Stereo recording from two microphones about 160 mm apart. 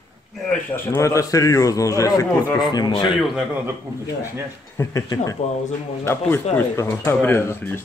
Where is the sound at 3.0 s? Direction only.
Centre (ahead or behind).